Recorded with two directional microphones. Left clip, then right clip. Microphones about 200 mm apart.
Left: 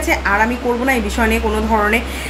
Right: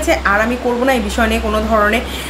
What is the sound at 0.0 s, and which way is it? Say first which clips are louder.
A woman's voice: right 1 dB; 15° right (ahead or behind).